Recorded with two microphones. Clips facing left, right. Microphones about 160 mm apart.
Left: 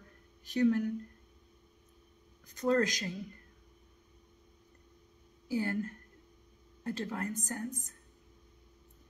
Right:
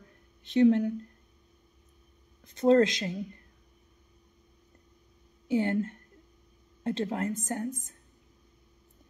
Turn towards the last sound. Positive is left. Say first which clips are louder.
# right 5 dB
turn(degrees=-25)  # may be behind; listen again after turning